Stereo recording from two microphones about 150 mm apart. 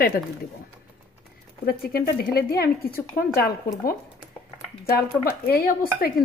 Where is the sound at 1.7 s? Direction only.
90° left.